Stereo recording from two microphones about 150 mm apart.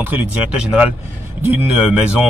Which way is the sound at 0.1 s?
10° right (ahead or behind).